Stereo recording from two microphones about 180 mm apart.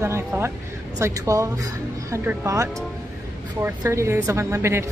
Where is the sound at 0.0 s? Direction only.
15° right (ahead or behind).